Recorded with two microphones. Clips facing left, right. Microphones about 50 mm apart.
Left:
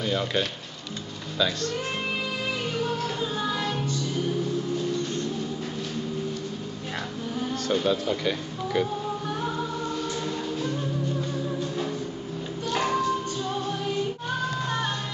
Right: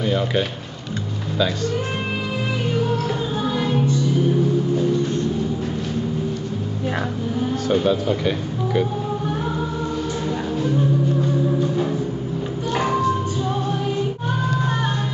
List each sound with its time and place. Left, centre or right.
0.0 s speech: centre
3.5 s music: centre
7.6 s speech: centre
11.6 s music: centre